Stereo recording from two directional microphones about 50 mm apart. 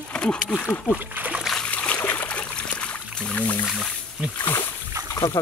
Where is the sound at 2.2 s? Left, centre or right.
Left.